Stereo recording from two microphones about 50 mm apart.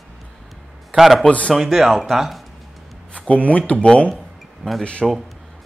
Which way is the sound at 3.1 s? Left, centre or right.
Left.